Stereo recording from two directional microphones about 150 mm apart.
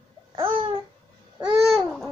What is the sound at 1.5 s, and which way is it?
Babbling, centre (ahead or behind).